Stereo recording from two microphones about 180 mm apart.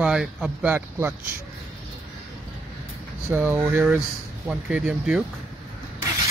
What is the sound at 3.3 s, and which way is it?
Speech, 10° right (ahead or behind).